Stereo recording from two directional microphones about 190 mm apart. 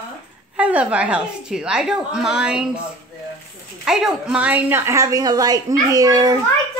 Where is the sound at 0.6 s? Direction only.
5° right (ahead or behind).